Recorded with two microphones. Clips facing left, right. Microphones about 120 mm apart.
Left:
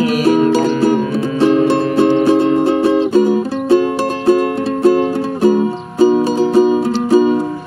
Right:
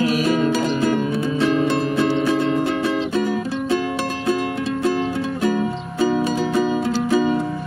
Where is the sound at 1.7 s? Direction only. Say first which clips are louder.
Left 7 dB; 50° left (ahead or behind).